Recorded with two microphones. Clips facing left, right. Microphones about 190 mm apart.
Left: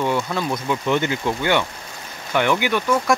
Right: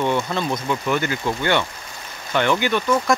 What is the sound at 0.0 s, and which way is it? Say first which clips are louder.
Speech: even; 5° left (ahead or behind).